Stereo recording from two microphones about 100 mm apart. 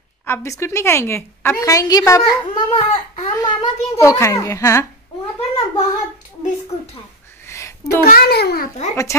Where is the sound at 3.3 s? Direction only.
40° left (ahead or behind).